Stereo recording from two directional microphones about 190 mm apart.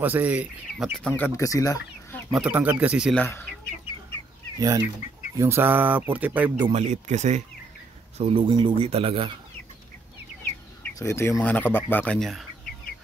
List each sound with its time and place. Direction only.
0.0 s speech: 10° right (ahead or behind); by 2.2 s 15° left (ahead or behind)
2.3 s mantra: 5° right (ahead or behind)
3.2 s speech: 10° left (ahead or behind)
4.6 s mantra: 20° right (ahead or behind)
6.6 s speech: 35° right (ahead or behind)
10.8 s bird: 15° left (ahead or behind)
11.4 s speech: 10° left (ahead or behind)